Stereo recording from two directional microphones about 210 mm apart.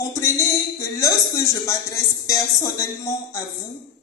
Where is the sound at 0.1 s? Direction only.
15° left (ahead or behind).